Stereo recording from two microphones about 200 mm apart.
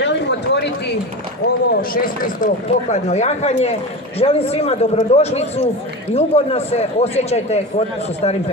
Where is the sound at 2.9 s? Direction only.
35° left (ahead or behind).